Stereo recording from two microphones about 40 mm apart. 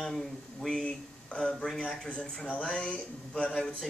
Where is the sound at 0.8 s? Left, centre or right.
Left.